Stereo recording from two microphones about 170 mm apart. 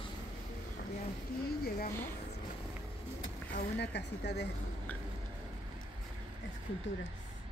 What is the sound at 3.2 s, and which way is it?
Vehicle, 90° left.